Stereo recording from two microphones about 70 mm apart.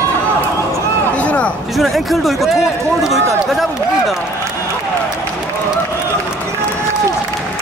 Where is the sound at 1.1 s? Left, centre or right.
Centre.